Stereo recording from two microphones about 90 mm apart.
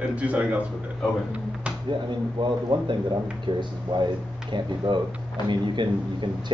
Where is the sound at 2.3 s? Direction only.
60° right (ahead or behind).